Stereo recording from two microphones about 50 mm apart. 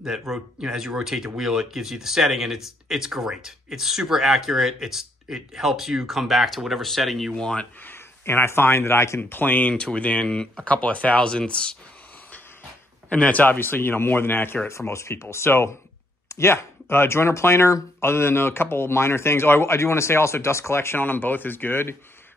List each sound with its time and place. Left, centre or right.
0.6 s speech: centre
7.3 s speech: centre
7.8 s speech: left
9.3 s speech: left
9.7 s speech: left
13.1 s speech: left
13.6 s speech: left
14.7 s speech: left
21.0 s speech: left